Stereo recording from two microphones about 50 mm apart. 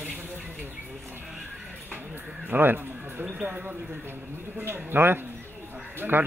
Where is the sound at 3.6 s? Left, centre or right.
Right.